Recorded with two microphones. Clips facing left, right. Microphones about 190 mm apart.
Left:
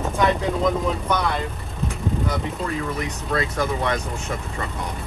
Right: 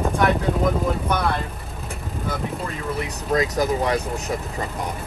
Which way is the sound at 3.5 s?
40° right (ahead or behind).